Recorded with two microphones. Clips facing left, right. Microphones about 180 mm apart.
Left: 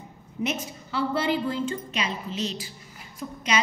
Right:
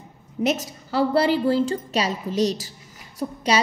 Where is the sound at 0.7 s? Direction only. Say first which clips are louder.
Right 6 dB; 40° right (ahead or behind).